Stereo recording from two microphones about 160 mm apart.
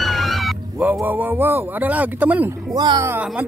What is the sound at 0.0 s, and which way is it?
Speech, centre (ahead or behind).